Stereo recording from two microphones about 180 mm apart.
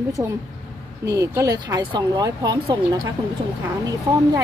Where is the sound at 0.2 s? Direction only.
15° right (ahead or behind).